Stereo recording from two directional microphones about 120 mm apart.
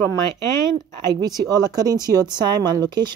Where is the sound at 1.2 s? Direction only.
35° right (ahead or behind).